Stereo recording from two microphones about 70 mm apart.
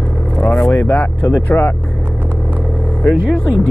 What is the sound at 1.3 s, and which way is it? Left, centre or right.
Speech, left.